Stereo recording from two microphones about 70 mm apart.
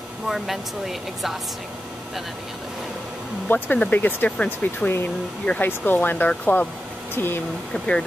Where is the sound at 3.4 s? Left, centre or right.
Left.